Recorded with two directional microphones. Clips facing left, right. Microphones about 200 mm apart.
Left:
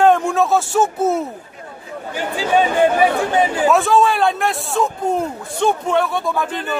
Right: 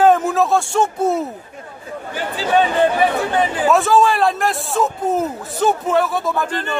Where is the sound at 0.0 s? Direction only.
5° right (ahead or behind).